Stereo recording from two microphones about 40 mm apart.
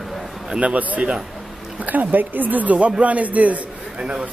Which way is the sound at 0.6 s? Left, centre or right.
Right.